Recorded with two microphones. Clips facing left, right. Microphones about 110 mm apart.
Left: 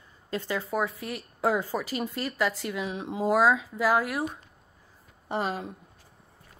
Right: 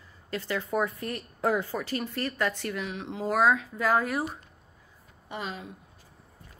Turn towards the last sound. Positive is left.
turn(degrees=40)  # may be behind; listen again after turning